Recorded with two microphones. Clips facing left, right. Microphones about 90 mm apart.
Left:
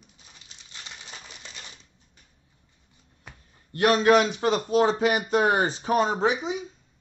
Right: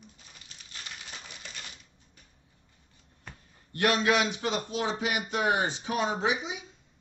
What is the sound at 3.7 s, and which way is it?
A man's voice, 35° left (ahead or behind).